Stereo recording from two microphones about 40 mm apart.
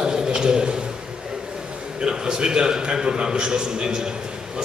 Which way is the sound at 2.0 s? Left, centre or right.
Centre.